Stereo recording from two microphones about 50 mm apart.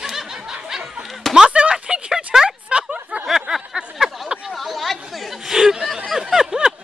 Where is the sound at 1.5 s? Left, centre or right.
Centre.